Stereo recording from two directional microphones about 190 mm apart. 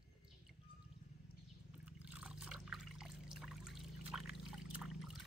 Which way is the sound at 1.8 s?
5° right (ahead or behind).